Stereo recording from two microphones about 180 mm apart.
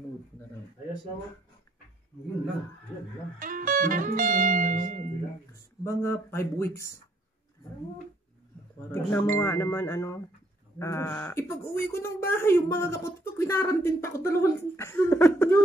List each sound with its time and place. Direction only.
3.3 s speech: 50° right (ahead or behind)
5.5 s speech: 15° left (ahead or behind)
8.9 s speech: 15° left (ahead or behind)